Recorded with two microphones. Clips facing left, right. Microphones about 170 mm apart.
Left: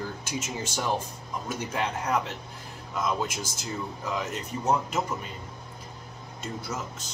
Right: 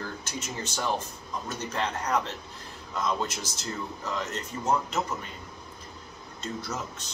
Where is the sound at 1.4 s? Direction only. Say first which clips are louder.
Left 1 dB; 10° left (ahead or behind).